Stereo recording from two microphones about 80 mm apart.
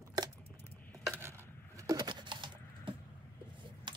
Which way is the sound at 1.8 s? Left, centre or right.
Right.